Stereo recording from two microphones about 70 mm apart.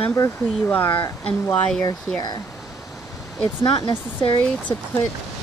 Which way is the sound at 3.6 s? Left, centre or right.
Left.